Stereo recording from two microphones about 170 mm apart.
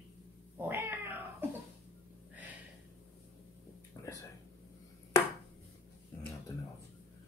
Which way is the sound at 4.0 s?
20° left (ahead or behind).